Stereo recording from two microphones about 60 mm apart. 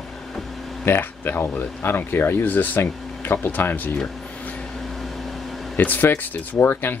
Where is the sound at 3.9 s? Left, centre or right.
Left.